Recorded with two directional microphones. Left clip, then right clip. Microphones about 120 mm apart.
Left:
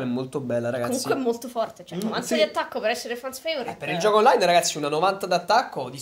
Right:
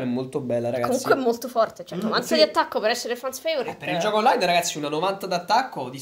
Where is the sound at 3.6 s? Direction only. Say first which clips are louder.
Left 1 dB; 30° left (ahead or behind).